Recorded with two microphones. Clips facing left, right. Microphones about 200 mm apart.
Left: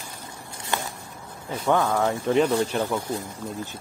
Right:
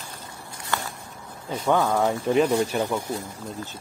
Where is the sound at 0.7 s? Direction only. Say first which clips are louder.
Even; 20° left (ahead or behind).